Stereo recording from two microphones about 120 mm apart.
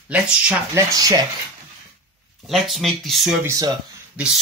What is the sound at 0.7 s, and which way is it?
Speech, 35° right (ahead or behind).